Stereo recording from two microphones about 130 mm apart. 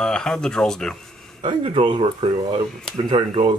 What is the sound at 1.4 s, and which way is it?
Speech, 40° right (ahead or behind).